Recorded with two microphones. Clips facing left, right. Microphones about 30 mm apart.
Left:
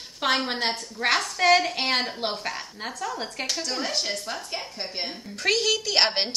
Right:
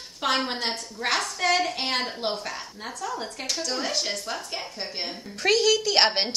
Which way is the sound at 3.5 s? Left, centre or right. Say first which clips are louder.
Right 2 dB; centre.